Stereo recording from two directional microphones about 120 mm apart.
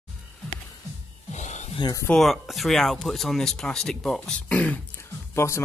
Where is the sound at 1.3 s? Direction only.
75° left (ahead or behind).